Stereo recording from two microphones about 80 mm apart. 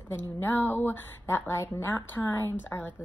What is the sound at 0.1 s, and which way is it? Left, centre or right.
A woman's voice, left.